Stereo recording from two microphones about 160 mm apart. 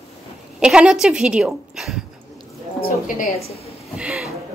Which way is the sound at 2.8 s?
65° left (ahead or behind).